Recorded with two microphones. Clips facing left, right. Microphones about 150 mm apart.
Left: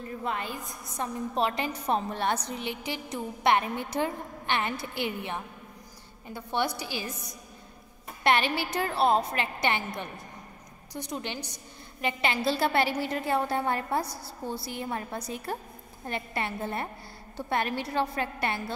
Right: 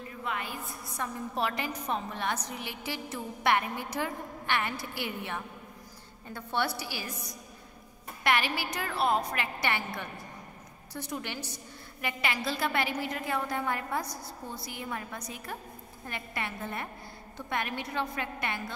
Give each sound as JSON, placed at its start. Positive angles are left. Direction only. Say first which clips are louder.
{"t": 0.2, "sound": "a woman's voice", "louder": "left 2 dB", "side_deg": 35}
{"t": 0.7, "sound": "a woman's voice", "louder": "left 2 dB", "side_deg": 20}